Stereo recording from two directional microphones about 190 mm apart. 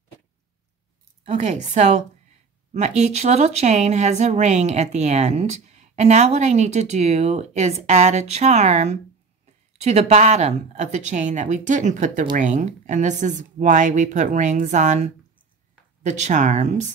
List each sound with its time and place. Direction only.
1.2 s speech: 40° right (ahead or behind)